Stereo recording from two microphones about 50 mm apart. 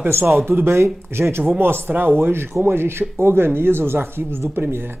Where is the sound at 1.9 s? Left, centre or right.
Right.